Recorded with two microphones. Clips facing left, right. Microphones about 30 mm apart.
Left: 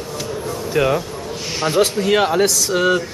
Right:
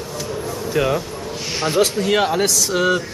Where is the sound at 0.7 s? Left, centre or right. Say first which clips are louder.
Left 2 dB; centre.